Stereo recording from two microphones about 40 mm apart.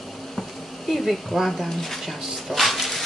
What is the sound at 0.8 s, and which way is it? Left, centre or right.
Speech, centre.